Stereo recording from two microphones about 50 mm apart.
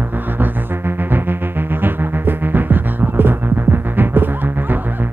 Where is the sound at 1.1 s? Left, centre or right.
Right.